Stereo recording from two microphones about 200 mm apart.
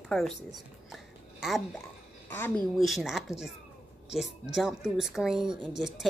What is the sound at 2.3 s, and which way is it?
Speech, 10° left (ahead or behind).